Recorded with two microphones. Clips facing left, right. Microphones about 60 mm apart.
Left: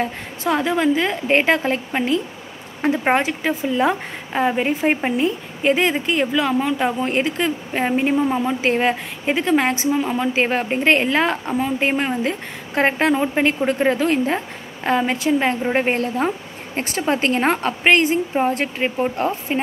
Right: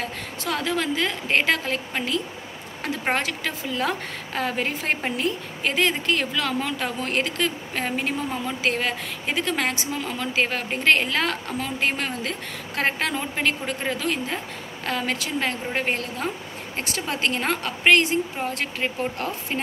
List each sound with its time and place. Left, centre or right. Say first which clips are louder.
0.0 s a woman's voice: left 7 dB; left